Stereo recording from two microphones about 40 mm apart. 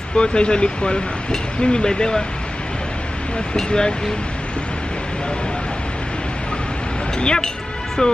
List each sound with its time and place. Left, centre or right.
0.2 s speech: left
3.5 s speech: centre
7.2 s speech: left